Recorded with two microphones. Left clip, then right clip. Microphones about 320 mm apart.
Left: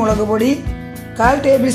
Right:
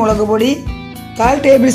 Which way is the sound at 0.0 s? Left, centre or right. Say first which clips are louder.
Right 3 dB; centre.